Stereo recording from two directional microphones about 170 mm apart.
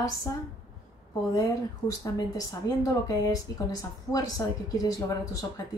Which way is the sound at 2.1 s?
20° left (ahead or behind).